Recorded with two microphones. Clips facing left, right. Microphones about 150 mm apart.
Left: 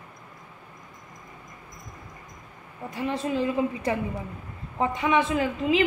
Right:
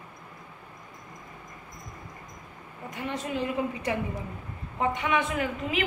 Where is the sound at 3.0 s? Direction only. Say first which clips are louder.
Left 5 dB; 30° left (ahead or behind).